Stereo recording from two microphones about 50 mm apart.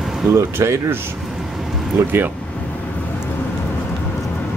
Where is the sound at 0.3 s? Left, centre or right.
Right.